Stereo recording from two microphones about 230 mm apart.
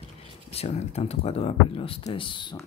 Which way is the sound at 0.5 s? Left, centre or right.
Left.